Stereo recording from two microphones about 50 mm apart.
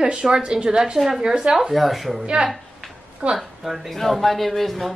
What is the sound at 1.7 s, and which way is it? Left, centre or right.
Speech, centre.